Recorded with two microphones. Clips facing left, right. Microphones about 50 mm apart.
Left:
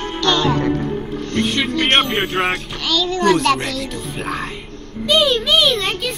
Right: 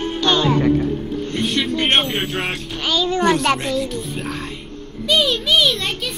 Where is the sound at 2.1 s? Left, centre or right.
Centre.